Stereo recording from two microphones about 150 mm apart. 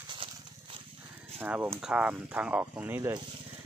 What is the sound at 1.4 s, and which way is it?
Speech, 10° right (ahead or behind).